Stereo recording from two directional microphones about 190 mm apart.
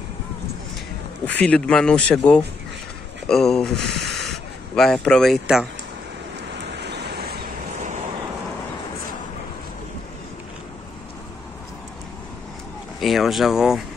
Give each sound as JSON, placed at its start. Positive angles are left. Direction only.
{"t": 1.2, "sound": "speech", "side_deg": 5}
{"t": 6.5, "sound": "a sound", "side_deg": -60}
{"t": 13.0, "sound": "speech", "side_deg": 0}